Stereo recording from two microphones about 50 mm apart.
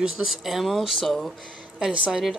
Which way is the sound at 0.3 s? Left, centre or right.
Centre.